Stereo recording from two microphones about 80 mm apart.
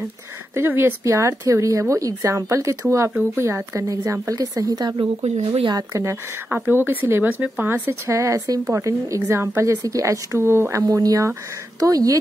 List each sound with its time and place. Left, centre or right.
0.6 s speech: right
4.9 s speech: right
5.8 s speech: right
6.5 s speech: right
7.8 s speech: right
10.8 s speech: right